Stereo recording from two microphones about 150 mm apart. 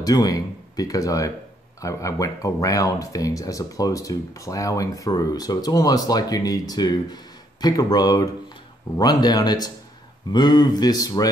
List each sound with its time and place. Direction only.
0.0 s speech: 25° left (ahead or behind)